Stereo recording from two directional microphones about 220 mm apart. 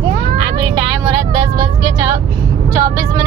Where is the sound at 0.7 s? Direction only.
20° right (ahead or behind).